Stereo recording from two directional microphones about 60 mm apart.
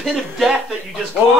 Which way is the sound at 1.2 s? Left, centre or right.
Centre.